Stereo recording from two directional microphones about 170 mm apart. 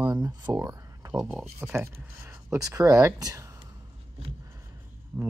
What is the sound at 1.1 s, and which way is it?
Speech, 10° right (ahead or behind).